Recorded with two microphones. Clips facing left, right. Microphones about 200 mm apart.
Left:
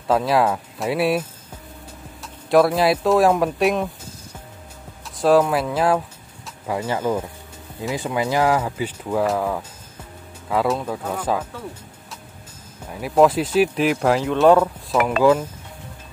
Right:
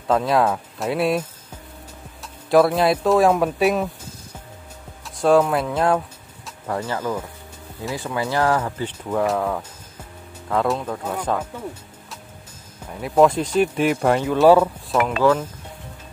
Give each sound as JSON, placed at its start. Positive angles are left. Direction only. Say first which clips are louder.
{"t": 0.1, "sound": "speech", "louder": "even", "side_deg": 5}
{"t": 2.2, "sound": "speech", "louder": "even", "side_deg": 0}
{"t": 5.0, "sound": "speech", "louder": "even", "side_deg": 0}
{"t": 7.0, "sound": "speech", "louder": "left 3 dB", "side_deg": 25}
{"t": 12.9, "sound": "speech", "louder": "even", "side_deg": 5}